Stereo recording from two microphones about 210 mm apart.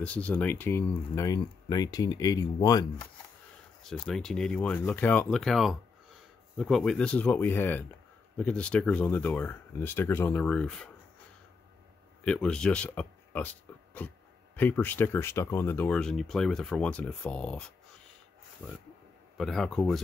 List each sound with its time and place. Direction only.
0.0 s speech: 5° left (ahead or behind)
3.8 s speech: centre (ahead or behind)
12.3 s speech: 5° left (ahead or behind)
19.3 s speech: centre (ahead or behind)